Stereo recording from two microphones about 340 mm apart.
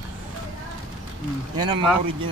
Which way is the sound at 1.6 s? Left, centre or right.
Centre.